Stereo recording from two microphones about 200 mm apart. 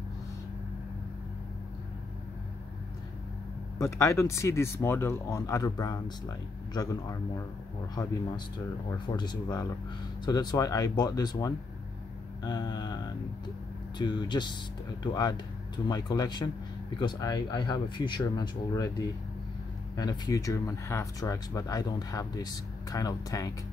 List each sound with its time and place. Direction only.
3.8 s speech: 15° left (ahead or behind)
8.9 s speech: 20° left (ahead or behind)